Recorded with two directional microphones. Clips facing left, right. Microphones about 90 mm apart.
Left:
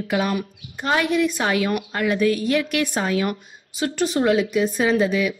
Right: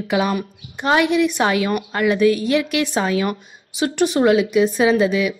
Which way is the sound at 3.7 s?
65° right (ahead or behind).